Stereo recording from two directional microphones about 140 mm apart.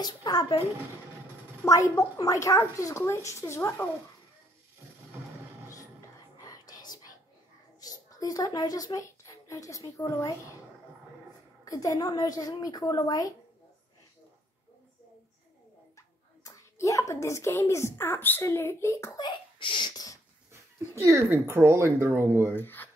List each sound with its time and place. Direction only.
0.0 s speech: 30° left (ahead or behind)
1.6 s speech: 25° left (ahead or behind)
6.4 s whispering: 25° left (ahead or behind)
7.8 s a child's voice: 25° left (ahead or behind)
11.6 s speech: 25° left (ahead or behind)
16.4 s speech: 25° left (ahead or behind)
20.9 s speech: 20° right (ahead or behind)
22.6 s speech: 15° left (ahead or behind)